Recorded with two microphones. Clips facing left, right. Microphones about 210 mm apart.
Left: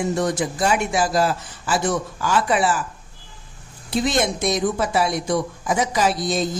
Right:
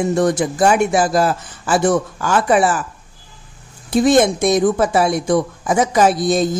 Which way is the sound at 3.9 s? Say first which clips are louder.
Right 8 dB; 50° right (ahead or behind).